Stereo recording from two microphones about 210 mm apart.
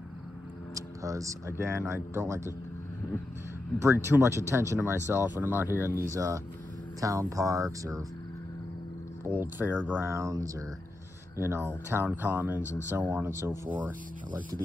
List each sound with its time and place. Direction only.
0.7 s speech: 15° right (ahead or behind)
3.8 s speech: 10° right (ahead or behind)
9.2 s speech: 10° right (ahead or behind)